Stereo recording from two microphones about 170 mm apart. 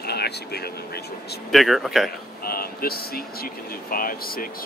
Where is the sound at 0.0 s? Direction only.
70° left (ahead or behind).